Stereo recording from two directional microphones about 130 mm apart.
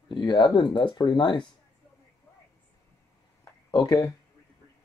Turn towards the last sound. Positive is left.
turn(degrees=30)  # may be behind; listen again after turning